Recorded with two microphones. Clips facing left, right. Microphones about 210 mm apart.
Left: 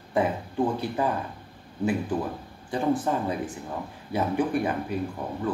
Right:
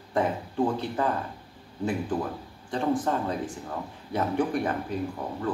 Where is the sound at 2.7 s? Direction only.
10° left (ahead or behind).